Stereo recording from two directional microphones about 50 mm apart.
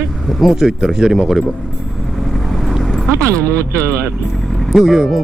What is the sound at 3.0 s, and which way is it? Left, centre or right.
Speech, right.